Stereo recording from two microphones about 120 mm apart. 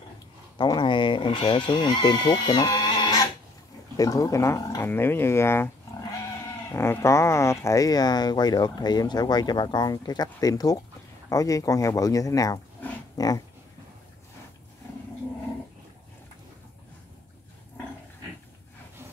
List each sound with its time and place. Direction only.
0.6 s speech: 40° left (ahead or behind); by 5.7 s 20° left (ahead or behind)
6.7 s speech: 20° left (ahead or behind)